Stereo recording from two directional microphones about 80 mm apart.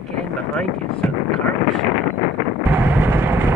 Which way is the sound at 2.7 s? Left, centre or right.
Right.